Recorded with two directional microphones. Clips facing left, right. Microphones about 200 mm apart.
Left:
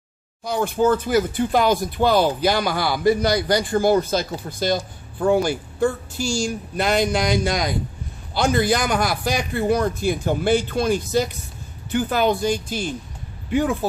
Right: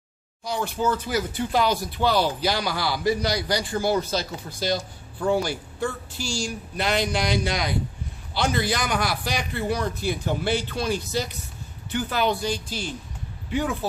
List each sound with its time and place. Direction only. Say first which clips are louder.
0.4 s speech: left 6 dB; 55° left (ahead or behind)